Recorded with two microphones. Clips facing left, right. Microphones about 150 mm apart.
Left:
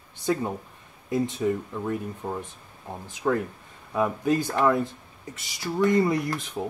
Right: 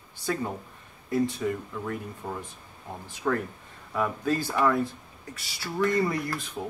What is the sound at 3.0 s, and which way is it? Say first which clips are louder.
Speech: left 3 dB; 15° left (ahead or behind).